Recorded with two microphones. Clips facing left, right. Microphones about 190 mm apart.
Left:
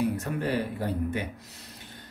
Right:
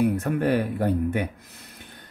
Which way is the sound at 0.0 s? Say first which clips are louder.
Right 6 dB; 55° right (ahead or behind).